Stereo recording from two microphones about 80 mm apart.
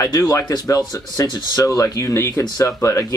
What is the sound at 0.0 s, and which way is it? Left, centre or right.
Speech, left.